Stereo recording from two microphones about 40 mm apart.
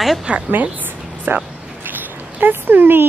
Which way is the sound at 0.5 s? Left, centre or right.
Right.